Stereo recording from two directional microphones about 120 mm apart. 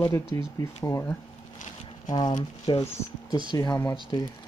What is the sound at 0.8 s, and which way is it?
Speech, 25° left (ahead or behind).